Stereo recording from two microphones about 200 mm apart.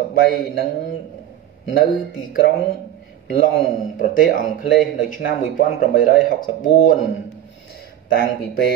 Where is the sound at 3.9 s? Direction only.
45° left (ahead or behind).